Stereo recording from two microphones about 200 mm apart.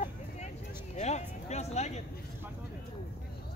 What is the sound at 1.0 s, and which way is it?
Music, 35° left (ahead or behind).